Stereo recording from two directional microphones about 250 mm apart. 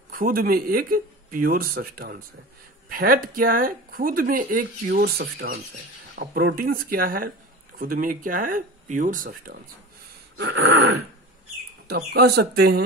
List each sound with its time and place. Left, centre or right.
0.1 s speech: right
10.3 s a sound: right
11.9 s speech: right